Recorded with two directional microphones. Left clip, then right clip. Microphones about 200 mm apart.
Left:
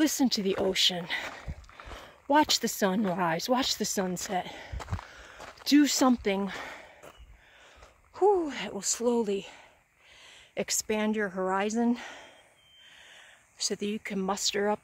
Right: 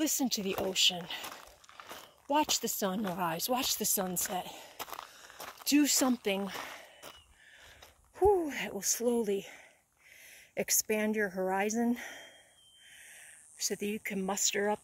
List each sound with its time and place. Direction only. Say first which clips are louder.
0.0 s speech: left 6 dB; 30° left (ahead or behind)
2.2 s speech: left 6 dB; 30° left (ahead or behind)
4.7 s a sound: left 1 dB; 50° right (ahead or behind)
5.6 s speech: left 5 dB; 25° left (ahead or behind)
8.1 s speech: left 3 dB; centre (ahead or behind)